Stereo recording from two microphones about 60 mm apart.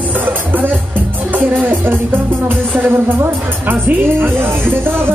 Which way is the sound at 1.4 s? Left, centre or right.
Right.